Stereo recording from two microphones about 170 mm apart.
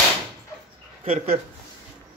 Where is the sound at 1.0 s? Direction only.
35° right (ahead or behind).